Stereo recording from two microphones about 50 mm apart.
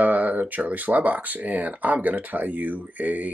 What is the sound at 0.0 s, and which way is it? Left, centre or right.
Speech, right.